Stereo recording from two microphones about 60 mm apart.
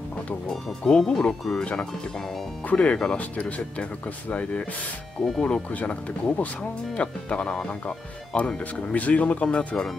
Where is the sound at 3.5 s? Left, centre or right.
Left.